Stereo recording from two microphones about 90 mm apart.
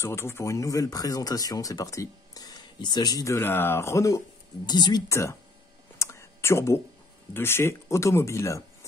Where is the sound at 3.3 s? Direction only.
25° left (ahead or behind).